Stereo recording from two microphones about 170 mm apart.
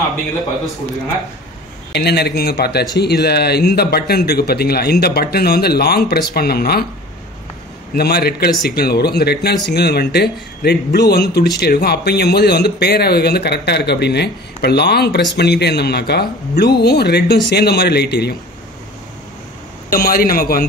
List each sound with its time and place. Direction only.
2.0 s a man's voice: 75° left (ahead or behind)
7.9 s a man's voice: 65° left (ahead or behind)
19.9 s a man's voice: 60° left (ahead or behind)